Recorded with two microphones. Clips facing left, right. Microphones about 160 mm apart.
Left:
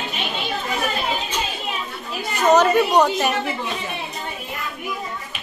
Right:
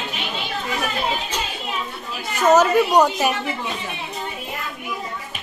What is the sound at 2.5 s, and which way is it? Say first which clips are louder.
Speech: even; 5° right (ahead or behind).